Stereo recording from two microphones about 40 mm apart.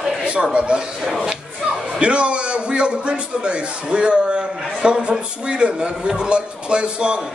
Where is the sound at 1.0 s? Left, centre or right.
Centre.